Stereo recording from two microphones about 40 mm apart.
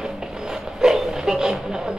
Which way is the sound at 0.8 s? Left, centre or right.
Centre.